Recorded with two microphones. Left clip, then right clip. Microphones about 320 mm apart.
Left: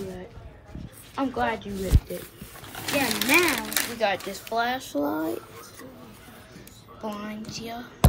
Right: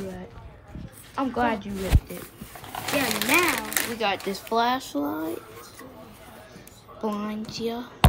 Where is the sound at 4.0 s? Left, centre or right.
Centre.